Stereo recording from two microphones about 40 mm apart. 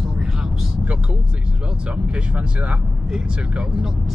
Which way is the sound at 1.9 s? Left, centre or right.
Right.